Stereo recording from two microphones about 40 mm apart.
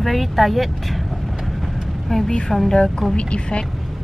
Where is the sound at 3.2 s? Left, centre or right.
Left.